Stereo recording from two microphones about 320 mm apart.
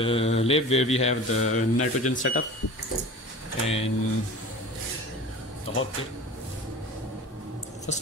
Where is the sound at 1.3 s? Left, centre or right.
Left.